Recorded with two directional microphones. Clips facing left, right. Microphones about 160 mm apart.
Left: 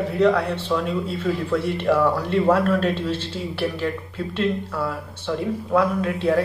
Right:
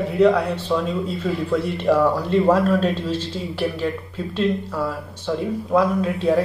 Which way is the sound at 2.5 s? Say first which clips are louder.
Right 1 dB; 15° right (ahead or behind).